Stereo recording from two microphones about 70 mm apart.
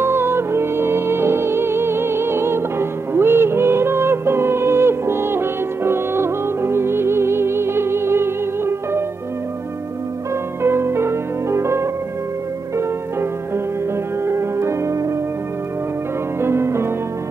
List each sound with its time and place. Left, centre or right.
0.0 s music: right
10.6 s music: right
14.2 s music: right
16.3 s music: right